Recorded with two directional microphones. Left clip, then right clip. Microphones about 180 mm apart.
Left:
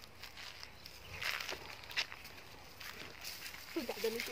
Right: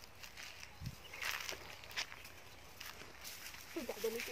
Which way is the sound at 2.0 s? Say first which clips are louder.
Left 5 dB; 20° left (ahead or behind).